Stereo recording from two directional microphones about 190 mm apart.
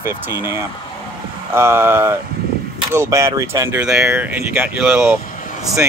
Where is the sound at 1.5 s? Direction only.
10° right (ahead or behind).